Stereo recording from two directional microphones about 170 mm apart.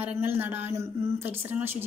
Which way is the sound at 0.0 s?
10° right (ahead or behind).